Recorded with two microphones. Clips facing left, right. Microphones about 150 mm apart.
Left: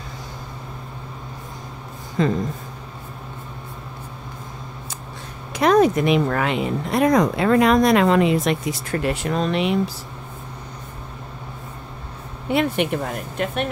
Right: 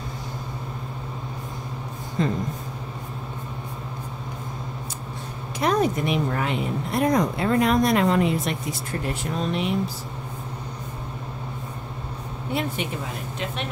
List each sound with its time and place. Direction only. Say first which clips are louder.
2.2 s speech: left 4 dB; 90° left
5.6 s speech: left 6 dB; 90° left
12.4 s speech: left 7 dB; 70° left (ahead or behind); by 13.7 s 55° left (ahead or behind)